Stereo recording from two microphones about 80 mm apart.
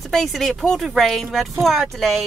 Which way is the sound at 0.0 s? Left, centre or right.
Centre.